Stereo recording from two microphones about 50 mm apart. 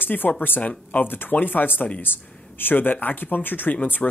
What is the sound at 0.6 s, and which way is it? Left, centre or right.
Speech, left.